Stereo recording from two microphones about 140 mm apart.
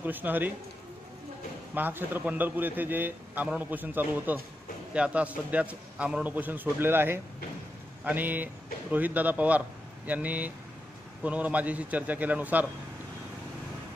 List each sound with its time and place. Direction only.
0.0 s a man's voice: 15° right (ahead or behind)
1.7 s a man's voice: 15° right (ahead or behind)